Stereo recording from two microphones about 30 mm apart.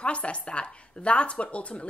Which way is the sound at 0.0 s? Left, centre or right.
Left.